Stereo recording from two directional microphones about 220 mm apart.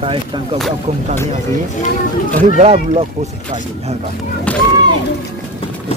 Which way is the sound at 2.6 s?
30° right (ahead or behind).